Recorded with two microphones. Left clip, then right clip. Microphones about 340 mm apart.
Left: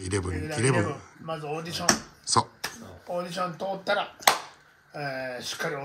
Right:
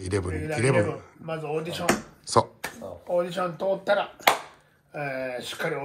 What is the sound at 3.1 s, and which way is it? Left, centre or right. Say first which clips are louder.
Speech: right 4 dB; centre.